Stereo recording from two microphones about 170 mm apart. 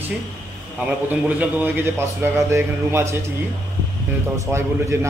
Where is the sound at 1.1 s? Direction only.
10° right (ahead or behind).